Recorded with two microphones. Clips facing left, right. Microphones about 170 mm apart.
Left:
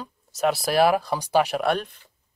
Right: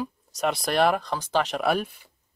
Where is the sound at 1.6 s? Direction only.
5° right (ahead or behind).